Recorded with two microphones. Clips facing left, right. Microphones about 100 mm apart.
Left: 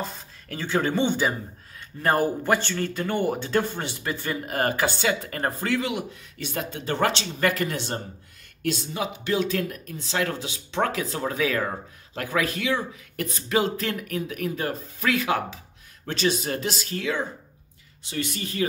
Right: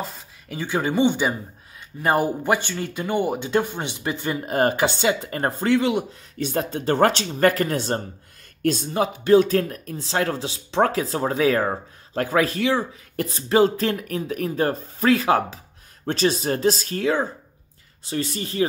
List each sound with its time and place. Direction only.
0.5 s speech: 15° right (ahead or behind); by 18.7 s 30° right (ahead or behind)